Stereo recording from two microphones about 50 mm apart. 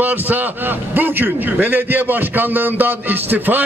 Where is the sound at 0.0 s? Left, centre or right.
Right.